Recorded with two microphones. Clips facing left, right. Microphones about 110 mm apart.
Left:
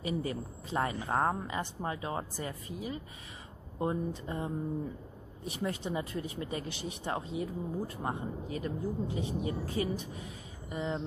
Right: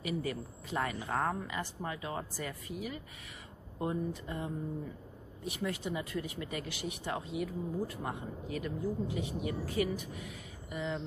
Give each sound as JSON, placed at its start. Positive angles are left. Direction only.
{"t": 0.0, "sound": "speech", "side_deg": 30}